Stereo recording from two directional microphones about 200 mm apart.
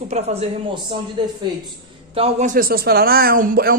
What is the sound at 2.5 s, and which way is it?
Speech, 45° right (ahead or behind).